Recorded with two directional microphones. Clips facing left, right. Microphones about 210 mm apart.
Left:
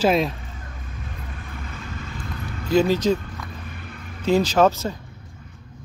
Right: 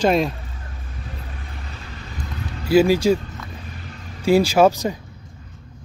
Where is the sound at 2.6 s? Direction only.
10° right (ahead or behind).